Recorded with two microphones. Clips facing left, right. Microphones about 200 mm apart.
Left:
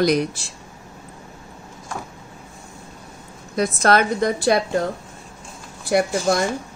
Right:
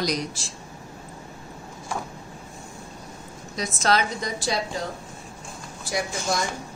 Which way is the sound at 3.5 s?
55° left (ahead or behind).